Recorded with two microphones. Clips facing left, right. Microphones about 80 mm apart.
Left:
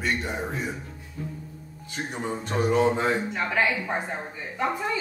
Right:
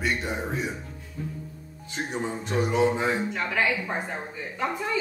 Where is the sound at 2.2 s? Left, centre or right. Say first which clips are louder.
Left 3 dB; centre.